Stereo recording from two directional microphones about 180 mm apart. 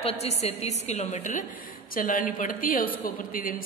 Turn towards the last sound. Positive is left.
turn(degrees=50)  # may be behind; listen again after turning